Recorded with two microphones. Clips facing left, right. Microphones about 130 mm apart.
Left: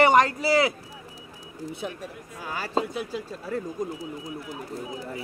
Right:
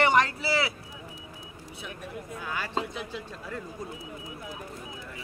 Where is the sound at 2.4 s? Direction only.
35° left (ahead or behind).